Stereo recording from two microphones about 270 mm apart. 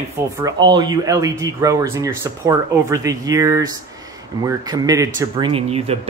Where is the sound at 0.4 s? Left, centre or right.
Centre.